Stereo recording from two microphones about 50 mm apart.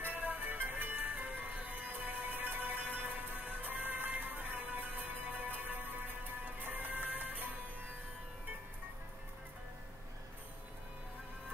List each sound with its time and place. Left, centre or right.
0.0 s music: right